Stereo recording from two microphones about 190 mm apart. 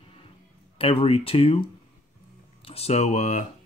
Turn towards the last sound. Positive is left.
turn(degrees=40)  # may be behind; listen again after turning